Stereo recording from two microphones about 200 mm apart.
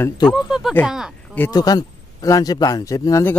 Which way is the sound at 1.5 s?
20° left (ahead or behind).